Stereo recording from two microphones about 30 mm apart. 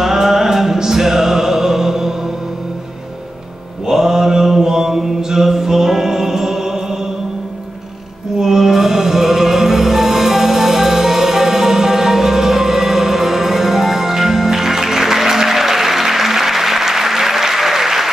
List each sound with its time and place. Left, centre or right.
0.0 s music: centre
3.8 s mantra: centre
4.9 s chant: centre
8.4 s music: centre